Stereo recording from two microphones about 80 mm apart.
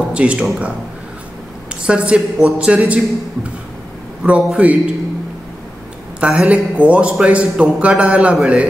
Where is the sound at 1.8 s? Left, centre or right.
Centre.